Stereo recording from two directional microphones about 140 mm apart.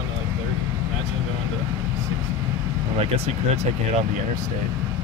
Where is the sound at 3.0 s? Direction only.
50° right (ahead or behind).